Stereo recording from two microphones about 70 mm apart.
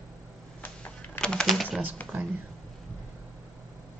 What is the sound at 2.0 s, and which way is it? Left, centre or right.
Speech, left.